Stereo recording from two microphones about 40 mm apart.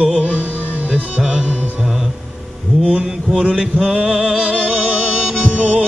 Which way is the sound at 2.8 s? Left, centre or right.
Right.